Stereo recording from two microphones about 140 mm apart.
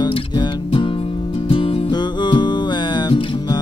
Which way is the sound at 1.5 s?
35° left (ahead or behind).